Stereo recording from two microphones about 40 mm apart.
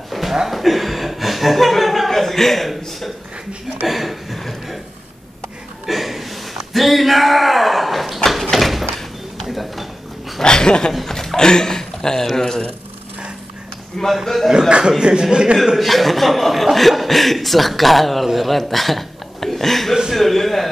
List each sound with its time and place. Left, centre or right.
0.1 s chuckle: centre
3.8 s a sound: centre
5.9 s chuckle: centre
6.7 s a sound: centre
10.4 s speech: centre
10.9 s chuckle: centre
11.3 s speech: centre
14.2 s speech: centre
15.0 s speech: centre
15.8 s speech: centre
20.1 s a sound: centre